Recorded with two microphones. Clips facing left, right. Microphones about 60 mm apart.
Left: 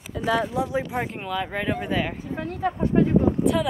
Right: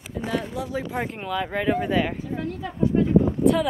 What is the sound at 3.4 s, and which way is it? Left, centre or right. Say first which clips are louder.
Speech: right 3 dB; centre.